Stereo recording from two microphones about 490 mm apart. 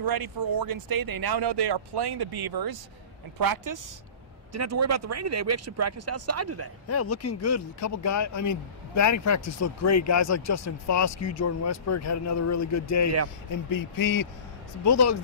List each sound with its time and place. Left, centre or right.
0.0 s speech: right
6.9 s speech: left